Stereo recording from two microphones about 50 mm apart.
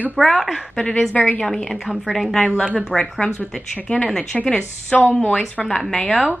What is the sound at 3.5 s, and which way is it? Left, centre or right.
Speech, centre.